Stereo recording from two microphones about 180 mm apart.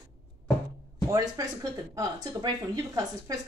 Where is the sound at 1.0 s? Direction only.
20° right (ahead or behind).